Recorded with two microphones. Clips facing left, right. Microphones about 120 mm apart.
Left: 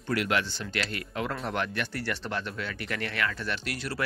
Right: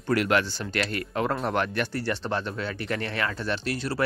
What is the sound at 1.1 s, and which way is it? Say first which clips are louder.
Speech: right 5 dB; 40° right (ahead or behind).